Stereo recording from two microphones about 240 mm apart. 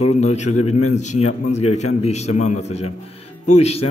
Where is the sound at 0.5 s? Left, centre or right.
Left.